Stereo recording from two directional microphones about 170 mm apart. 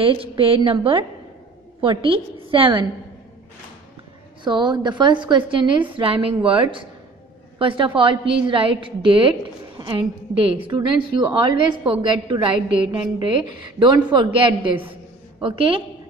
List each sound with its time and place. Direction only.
0.0 s a woman's voice: 30° right (ahead or behind)
4.5 s a woman's voice: 25° right (ahead or behind)